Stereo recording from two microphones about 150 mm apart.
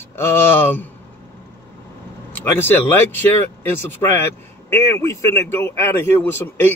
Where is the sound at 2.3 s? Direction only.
15° left (ahead or behind).